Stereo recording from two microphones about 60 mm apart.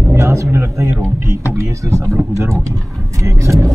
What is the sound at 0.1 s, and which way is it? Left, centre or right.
Vehicle, right.